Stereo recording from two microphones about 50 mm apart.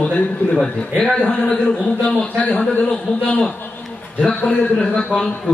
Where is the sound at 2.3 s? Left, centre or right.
Left.